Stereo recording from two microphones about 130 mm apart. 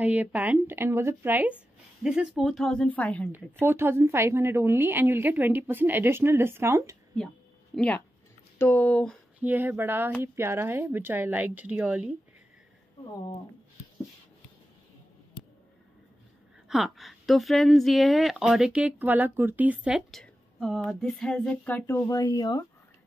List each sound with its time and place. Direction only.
0.0 s a woman's voice: 10° right (ahead or behind); by 3.3 s 10° left (ahead or behind)
3.3 s a woman's voice: 15° right (ahead or behind)
7.7 s speech: 10° left (ahead or behind)
9.4 s a woman's voice: 15° right (ahead or behind)
16.6 s a woman's voice: centre (ahead or behind)
20.1 s speech: centre (ahead or behind); by 22.7 s 30° left (ahead or behind)